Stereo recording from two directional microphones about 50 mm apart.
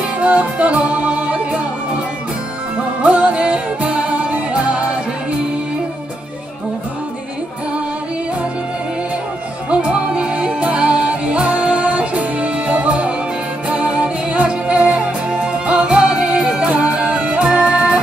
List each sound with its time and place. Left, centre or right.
0.2 s music: right
3.0 s music: right
9.7 s music: right